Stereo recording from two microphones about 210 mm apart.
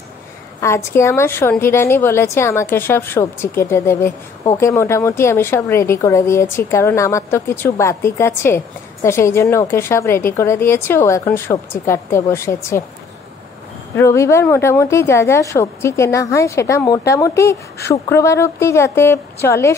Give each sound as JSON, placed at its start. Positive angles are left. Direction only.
{"t": 0.6, "sound": "a woman's voice", "side_deg": 15}
{"t": 13.9, "sound": "a woman's voice", "side_deg": 15}